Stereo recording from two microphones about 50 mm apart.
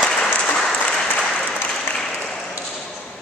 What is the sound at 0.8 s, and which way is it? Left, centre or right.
Applause, centre.